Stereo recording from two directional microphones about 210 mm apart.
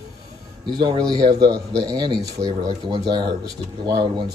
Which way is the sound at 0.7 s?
20° right (ahead or behind).